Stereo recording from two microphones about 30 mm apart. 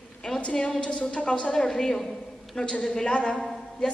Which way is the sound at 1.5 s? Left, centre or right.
Left.